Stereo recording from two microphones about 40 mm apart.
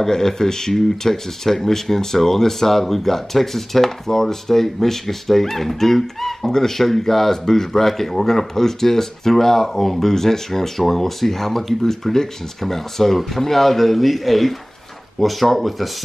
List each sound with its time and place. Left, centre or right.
0.0 s speech: centre